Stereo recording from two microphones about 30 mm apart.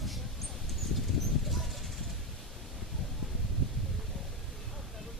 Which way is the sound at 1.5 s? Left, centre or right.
Centre.